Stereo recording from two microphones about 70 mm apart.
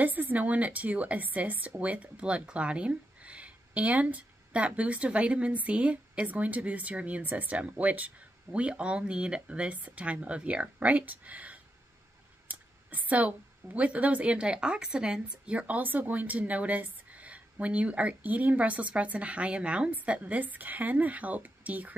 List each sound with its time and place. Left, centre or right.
0.0 s a woman's voice: right